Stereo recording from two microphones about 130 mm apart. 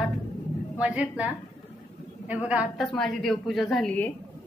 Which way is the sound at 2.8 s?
Centre (ahead or behind).